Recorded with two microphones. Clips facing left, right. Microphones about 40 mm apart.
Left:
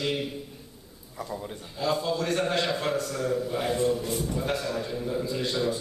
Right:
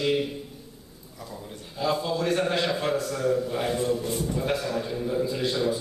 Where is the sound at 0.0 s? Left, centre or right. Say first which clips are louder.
Right 4 dB; centre.